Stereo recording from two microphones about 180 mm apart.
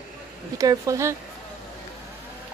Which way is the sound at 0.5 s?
20° right (ahead or behind).